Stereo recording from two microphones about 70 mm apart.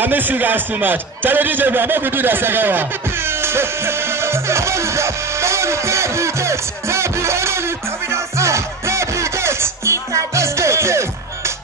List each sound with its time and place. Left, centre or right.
0.0 s speech: right
8.1 s music: right